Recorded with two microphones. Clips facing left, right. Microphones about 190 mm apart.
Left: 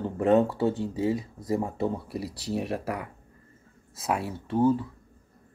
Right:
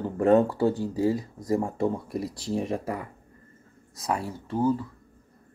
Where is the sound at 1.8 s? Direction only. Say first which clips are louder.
Right 2 dB; centre (ahead or behind).